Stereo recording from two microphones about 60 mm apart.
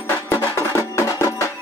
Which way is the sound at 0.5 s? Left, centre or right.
Left.